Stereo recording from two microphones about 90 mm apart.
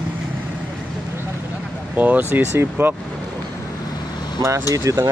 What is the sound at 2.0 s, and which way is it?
Speech, 20° right (ahead or behind).